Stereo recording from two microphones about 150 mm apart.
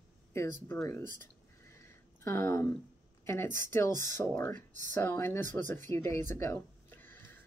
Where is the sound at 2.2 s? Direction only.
15° left (ahead or behind).